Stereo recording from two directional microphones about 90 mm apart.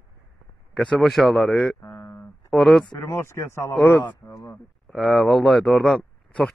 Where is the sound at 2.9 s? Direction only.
30° left (ahead or behind).